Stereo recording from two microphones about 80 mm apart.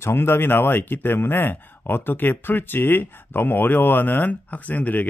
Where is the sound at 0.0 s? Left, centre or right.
Left.